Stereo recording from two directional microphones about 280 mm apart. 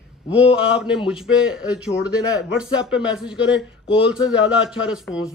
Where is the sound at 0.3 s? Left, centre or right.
Centre.